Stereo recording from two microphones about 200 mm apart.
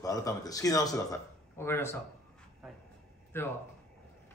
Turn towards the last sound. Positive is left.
turn(degrees=10)  # may be behind; listen again after turning